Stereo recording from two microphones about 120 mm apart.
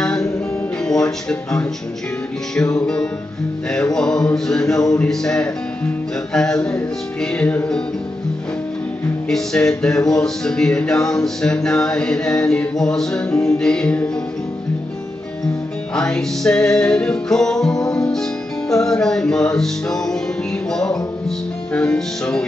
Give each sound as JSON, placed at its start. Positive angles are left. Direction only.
{"t": 0.8, "sound": "music", "side_deg": 5}
{"t": 9.3, "sound": "music", "side_deg": 5}
{"t": 15.9, "sound": "music", "side_deg": 5}